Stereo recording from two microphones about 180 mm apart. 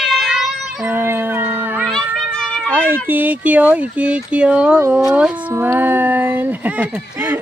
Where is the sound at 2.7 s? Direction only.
10° right (ahead or behind).